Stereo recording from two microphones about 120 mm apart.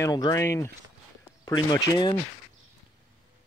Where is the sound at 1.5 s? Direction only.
35° left (ahead or behind).